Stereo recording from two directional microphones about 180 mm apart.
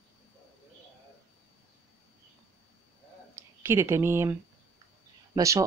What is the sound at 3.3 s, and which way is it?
Speech, 15° right (ahead or behind).